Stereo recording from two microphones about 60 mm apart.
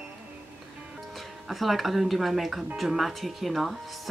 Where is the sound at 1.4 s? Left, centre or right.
Centre.